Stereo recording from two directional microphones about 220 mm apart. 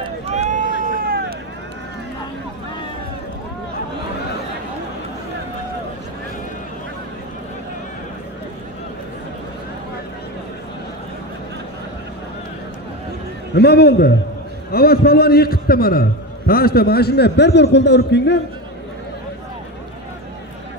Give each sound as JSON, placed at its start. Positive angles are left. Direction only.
{"t": 0.0, "sound": "vehicle", "side_deg": -30}
{"t": 13.6, "sound": "a man's voice", "side_deg": 45}